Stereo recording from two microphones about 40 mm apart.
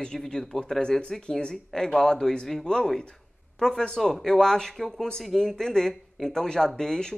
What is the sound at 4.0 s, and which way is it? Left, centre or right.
Speech, centre.